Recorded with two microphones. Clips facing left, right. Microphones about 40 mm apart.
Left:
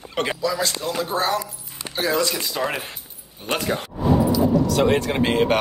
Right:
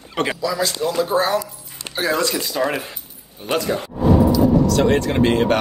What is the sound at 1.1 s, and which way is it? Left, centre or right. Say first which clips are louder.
Speech: right 4 dB; centre.